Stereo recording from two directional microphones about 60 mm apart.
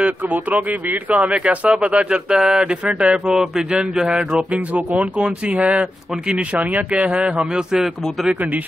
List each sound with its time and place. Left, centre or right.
0.0 s speech: right; by 4.5 s centre
4.5 s speech: right